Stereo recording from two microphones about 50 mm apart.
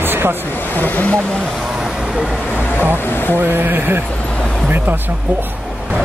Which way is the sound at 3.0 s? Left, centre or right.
Left.